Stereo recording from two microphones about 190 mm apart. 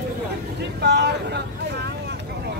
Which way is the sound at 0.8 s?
60° right (ahead or behind).